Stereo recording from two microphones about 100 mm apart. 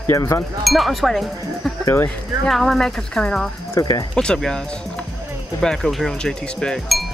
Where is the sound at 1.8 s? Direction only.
25° left (ahead or behind).